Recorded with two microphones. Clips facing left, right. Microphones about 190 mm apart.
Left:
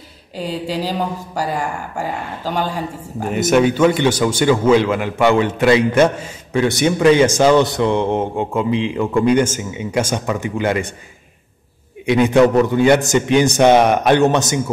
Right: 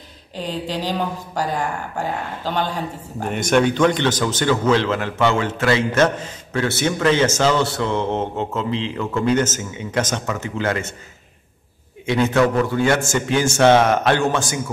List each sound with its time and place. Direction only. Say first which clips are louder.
0.4 s speech: left 3 dB; 10° left (ahead or behind)
12.1 s speech: left 5 dB; 15° left (ahead or behind)